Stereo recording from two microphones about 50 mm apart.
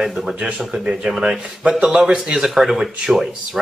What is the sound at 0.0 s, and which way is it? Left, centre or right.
Speech, centre.